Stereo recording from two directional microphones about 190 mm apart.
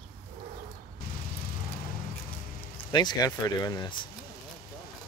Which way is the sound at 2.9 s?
20° left (ahead or behind).